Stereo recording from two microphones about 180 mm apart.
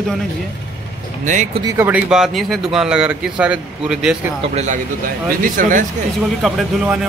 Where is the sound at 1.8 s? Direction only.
10° right (ahead or behind).